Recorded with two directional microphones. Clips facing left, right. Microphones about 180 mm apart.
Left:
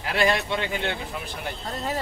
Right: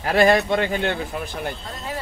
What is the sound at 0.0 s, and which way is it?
Speech, 45° right (ahead or behind).